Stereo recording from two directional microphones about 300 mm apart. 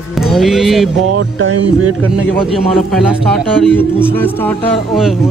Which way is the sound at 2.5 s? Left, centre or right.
Centre.